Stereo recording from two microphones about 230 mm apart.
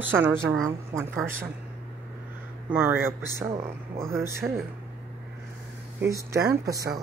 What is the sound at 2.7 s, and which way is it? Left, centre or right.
A man's voice, centre.